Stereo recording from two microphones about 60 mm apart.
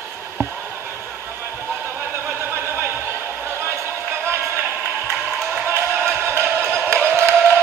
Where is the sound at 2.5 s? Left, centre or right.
Right.